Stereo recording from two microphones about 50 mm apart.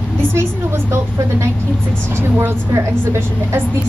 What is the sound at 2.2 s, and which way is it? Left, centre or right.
Speech, right.